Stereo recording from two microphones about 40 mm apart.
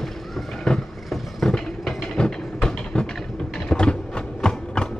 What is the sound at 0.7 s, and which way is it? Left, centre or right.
Vehicle, centre.